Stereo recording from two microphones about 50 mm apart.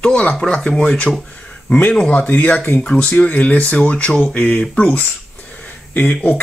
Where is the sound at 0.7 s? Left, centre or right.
Left.